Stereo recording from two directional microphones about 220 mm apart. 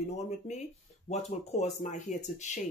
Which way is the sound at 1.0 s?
30° left (ahead or behind).